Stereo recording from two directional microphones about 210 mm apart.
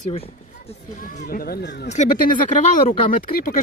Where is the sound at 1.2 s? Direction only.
45° left (ahead or behind).